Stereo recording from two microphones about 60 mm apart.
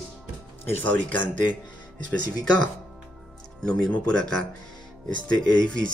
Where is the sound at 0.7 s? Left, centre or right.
Left.